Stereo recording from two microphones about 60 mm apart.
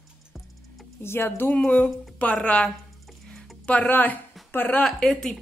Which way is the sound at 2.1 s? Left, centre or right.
Left.